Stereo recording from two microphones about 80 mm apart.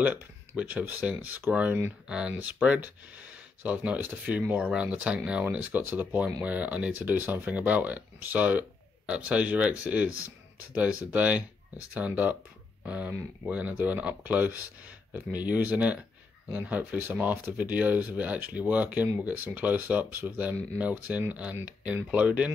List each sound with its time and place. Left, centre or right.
0.0 s speech: centre